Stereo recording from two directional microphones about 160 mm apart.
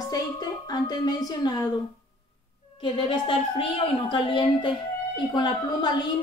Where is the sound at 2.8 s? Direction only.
30° left (ahead or behind).